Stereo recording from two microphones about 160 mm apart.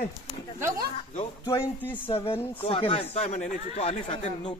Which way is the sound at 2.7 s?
35° left (ahead or behind).